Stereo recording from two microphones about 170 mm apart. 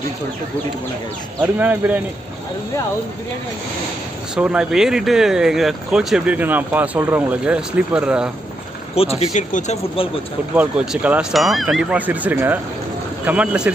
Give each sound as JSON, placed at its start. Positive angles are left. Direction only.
{"t": 1.4, "sound": "speech", "side_deg": -10}
{"t": 4.4, "sound": "speech", "side_deg": -5}
{"t": 9.2, "sound": "speech", "side_deg": 45}
{"t": 10.5, "sound": "speech", "side_deg": -10}